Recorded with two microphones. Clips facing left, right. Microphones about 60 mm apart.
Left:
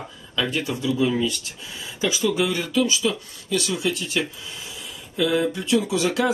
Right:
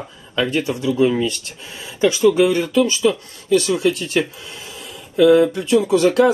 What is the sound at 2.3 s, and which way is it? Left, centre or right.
Speech, right.